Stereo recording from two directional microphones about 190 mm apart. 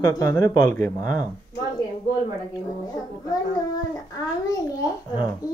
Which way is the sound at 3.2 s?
20° left (ahead or behind).